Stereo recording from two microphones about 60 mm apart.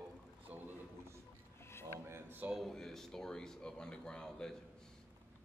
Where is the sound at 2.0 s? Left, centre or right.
Right.